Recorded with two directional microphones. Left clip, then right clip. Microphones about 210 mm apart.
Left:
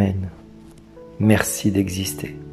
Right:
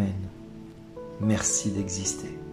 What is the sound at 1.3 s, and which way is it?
Speech, 35° left (ahead or behind).